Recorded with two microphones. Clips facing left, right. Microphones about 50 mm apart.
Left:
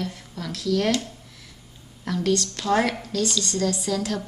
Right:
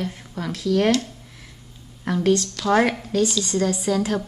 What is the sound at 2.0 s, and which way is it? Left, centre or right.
A woman's voice, right.